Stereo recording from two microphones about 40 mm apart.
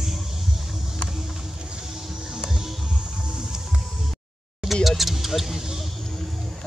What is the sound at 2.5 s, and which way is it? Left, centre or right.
Music, centre.